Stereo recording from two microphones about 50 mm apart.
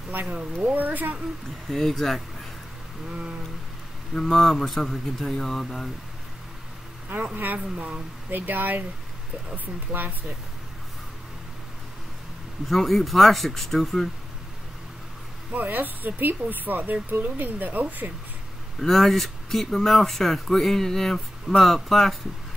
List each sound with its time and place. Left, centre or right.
0.1 s speech: right
1.7 s speech: centre
3.1 s a sound: centre
4.1 s speech: centre
7.3 s speech: right
9.9 s speech: right
12.6 s speech: centre
15.5 s speech: right
18.8 s speech: centre